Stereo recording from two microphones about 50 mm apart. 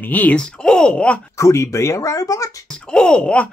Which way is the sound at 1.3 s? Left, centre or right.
Left.